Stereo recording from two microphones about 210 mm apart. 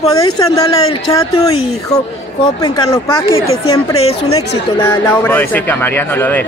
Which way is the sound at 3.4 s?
90° left.